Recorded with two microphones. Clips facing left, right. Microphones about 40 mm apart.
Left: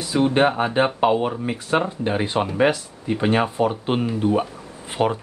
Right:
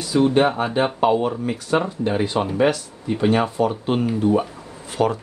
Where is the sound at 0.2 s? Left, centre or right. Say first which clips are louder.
Even; left.